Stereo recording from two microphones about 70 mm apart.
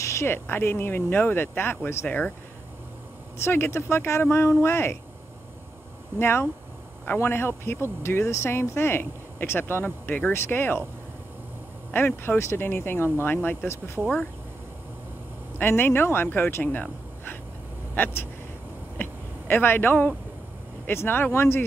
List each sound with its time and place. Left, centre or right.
0.0 s a sound: left
0.3 s speech: left
2.0 s speech: left
3.4 s speech: left
6.1 s speech: left
9.8 s speech: left
10.3 s speech: left
12.2 s speech: left
15.5 s speech: left
18.9 s a sound: left
20.8 s speech: left